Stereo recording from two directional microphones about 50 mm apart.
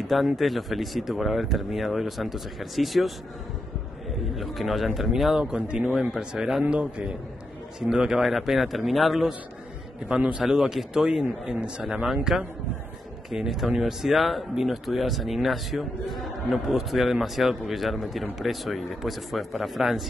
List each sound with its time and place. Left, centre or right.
0.0 s speech: centre
4.4 s speech: centre
5.4 s a man's voice: centre
10.0 s a man's voice: right
10.4 s a man's voice: centre